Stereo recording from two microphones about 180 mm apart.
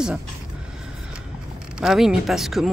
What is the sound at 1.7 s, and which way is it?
Speech, centre (ahead or behind).